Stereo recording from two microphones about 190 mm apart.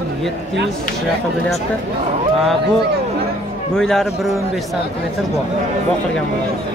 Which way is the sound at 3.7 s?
5° left (ahead or behind).